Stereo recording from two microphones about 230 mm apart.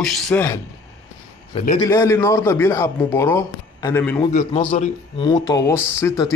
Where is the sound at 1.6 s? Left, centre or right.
Left.